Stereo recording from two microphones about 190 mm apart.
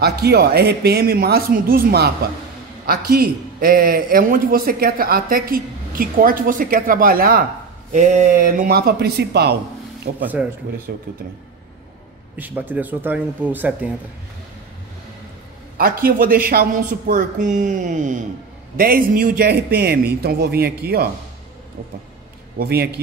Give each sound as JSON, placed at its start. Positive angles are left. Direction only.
{"t": 0.0, "sound": "a man's voice", "side_deg": -55}
{"t": 10.2, "sound": "speech", "side_deg": -10}
{"t": 10.9, "sound": "a man's voice", "side_deg": -55}
{"t": 12.4, "sound": "speech", "side_deg": -10}
{"t": 15.8, "sound": "a man's voice", "side_deg": -50}
{"t": 22.6, "sound": "a man's voice", "side_deg": -55}